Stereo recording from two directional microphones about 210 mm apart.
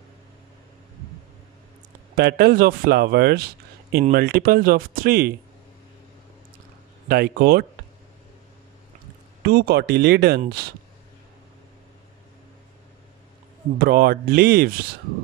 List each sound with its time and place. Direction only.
2.1 s speech: 50° right (ahead or behind)
7.1 s speech: 45° right (ahead or behind)
9.4 s speech: 45° right (ahead or behind)
13.7 s speech: 45° right (ahead or behind)